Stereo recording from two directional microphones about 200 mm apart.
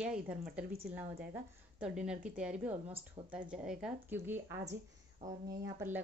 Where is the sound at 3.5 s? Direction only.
5° right (ahead or behind).